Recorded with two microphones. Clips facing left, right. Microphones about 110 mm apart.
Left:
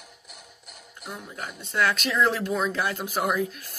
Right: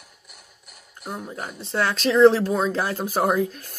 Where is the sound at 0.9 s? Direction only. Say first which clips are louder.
Right 6 dB; 40° right (ahead or behind).